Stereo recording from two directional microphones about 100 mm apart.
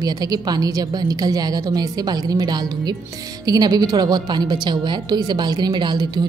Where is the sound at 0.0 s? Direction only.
40° right (ahead or behind).